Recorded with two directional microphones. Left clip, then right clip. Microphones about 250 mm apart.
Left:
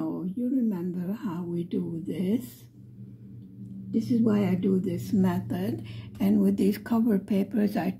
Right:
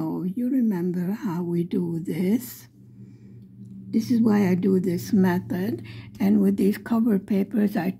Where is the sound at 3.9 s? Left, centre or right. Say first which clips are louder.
Right 3 dB; right.